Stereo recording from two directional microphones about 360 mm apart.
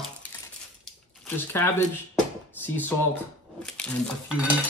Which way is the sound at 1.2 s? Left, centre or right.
Centre.